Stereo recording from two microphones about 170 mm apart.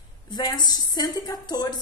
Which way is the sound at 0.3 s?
25° left (ahead or behind).